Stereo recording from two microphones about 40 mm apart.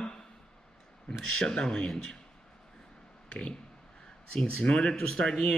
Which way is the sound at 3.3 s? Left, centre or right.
Left.